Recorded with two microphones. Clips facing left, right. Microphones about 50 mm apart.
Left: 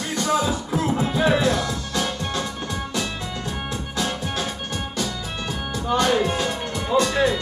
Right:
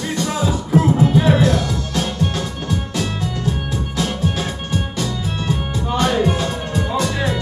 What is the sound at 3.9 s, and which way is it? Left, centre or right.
Music, right.